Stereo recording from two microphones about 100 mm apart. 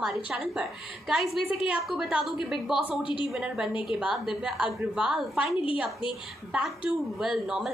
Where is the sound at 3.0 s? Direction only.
55° left (ahead or behind).